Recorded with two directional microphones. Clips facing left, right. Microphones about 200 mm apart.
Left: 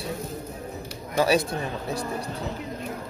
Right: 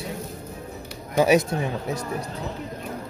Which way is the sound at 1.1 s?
20° right (ahead or behind).